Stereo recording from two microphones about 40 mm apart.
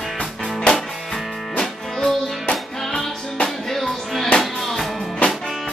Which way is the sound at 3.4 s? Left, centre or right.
Centre.